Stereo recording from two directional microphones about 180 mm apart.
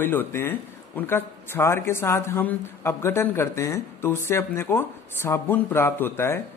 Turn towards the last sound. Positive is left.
turn(degrees=15)  # may be behind; listen again after turning